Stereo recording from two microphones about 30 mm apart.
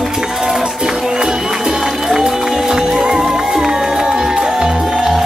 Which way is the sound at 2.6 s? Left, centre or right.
Centre.